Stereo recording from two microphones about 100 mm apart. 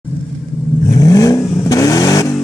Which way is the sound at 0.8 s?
35° left (ahead or behind).